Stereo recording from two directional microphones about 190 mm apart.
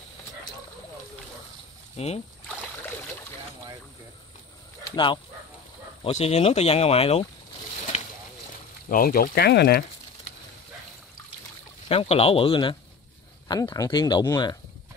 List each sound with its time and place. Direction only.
2.0 s speech: 35° left (ahead or behind)
4.9 s speech: 25° left (ahead or behind)
8.8 s speech: 50° left (ahead or behind)
11.9 s speech: 30° left (ahead or behind)